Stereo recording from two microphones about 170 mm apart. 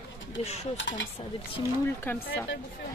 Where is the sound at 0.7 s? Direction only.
90° left.